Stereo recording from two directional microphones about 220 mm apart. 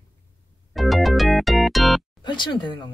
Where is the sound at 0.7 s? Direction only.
Centre (ahead or behind).